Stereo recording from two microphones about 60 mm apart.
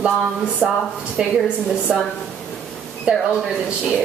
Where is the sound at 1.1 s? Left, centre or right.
Centre.